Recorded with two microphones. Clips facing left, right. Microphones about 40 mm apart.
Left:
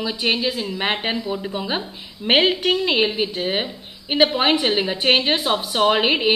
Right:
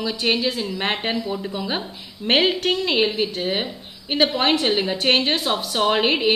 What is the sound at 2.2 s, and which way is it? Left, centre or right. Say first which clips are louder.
A woman's voice: left 2 dB; left.